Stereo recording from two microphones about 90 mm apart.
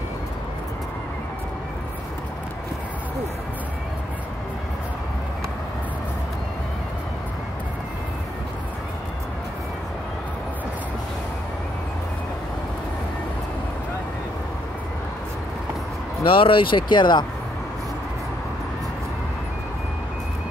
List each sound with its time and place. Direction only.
16.3 s speech: 70° left (ahead or behind); by 17.3 s 55° left (ahead or behind)